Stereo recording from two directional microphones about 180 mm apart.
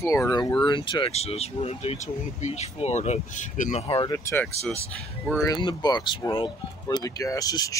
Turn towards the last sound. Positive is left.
turn(degrees=20)  # may be behind; listen again after turning